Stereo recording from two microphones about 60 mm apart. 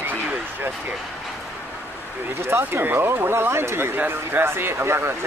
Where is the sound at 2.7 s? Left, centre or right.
Right.